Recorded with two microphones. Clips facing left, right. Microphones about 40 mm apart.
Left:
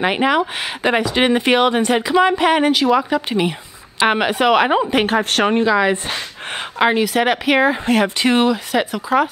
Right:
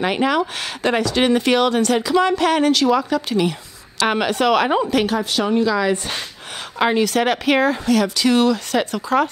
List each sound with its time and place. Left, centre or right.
0.0 s speech: left
5.0 s speech: left
5.6 s speech: left
7.8 s speech: left
8.7 s speech: centre